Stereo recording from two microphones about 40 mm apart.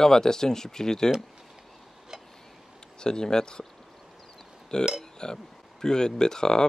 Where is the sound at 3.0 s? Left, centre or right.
Centre.